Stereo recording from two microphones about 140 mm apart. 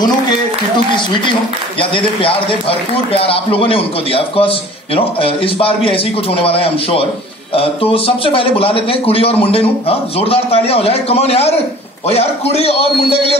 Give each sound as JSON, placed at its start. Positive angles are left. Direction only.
{"t": 1.8, "sound": "a man's voice", "side_deg": 40}